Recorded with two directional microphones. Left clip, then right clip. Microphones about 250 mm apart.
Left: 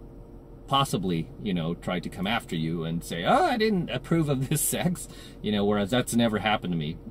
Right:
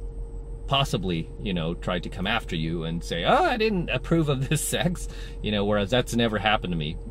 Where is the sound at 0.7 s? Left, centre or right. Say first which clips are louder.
Even; centre.